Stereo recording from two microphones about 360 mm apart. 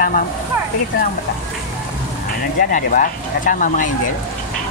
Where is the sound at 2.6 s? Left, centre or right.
Left.